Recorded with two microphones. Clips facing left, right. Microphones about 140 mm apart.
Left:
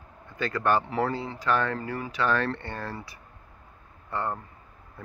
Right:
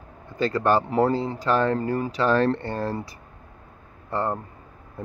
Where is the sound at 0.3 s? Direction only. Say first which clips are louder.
Right 4 dB; 35° right (ahead or behind).